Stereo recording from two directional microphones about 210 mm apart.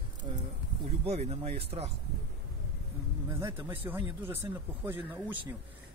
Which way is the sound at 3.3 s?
10° right (ahead or behind).